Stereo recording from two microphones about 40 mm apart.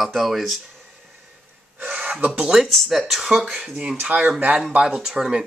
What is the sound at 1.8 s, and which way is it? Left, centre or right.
Gasp, right.